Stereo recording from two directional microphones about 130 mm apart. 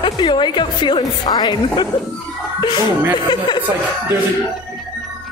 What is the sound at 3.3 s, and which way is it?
Speech, 35° left (ahead or behind).